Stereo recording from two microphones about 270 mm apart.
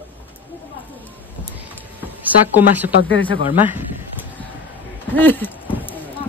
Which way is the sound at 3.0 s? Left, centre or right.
Left.